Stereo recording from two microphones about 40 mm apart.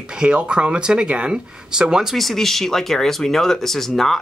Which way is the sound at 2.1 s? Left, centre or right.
Centre.